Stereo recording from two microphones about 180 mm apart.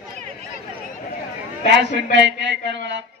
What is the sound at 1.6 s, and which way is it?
Speech, 80° right.